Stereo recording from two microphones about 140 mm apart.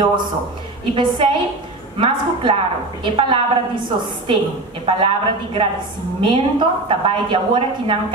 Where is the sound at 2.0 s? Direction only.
40° right (ahead or behind).